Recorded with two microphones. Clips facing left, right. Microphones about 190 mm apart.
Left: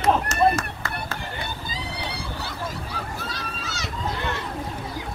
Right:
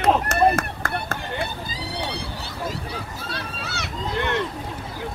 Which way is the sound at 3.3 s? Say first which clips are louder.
Right 2 dB; 60° right (ahead or behind).